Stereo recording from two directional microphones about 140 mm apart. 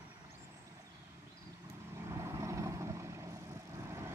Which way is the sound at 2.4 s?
20° right (ahead or behind).